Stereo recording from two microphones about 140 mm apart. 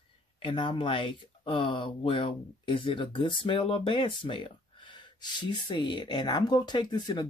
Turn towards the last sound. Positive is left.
turn(degrees=30)  # may be behind; listen again after turning